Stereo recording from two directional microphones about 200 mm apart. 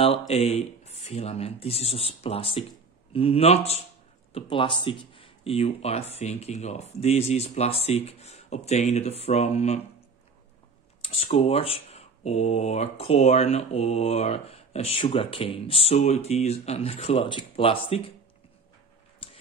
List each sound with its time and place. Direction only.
0.3 s speech: 30° left (ahead or behind)
11.0 s speech: 30° left (ahead or behind)